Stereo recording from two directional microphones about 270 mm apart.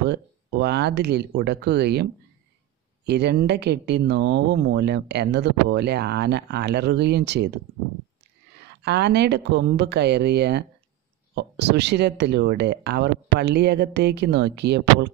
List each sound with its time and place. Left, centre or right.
0.0 s speech: right
3.1 s speech: right
8.6 s speech: right